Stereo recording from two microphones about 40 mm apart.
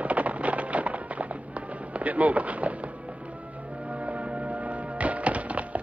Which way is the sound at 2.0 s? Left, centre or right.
Right.